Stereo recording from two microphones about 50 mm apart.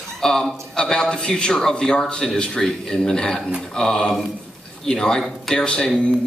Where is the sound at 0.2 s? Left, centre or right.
Centre.